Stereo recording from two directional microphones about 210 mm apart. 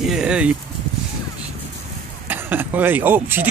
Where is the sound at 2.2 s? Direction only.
10° right (ahead or behind).